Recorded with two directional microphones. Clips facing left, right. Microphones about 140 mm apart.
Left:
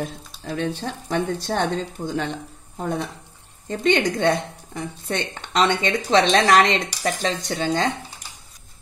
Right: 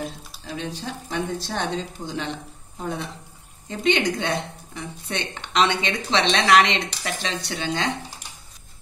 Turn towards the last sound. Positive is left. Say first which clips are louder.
# left 4 dB
turn(degrees=40)  # may be behind; listen again after turning